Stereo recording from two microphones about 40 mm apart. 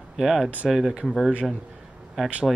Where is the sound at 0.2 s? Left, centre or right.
Centre.